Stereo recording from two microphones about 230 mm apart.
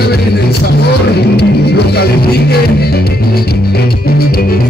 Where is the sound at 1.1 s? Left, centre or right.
Left.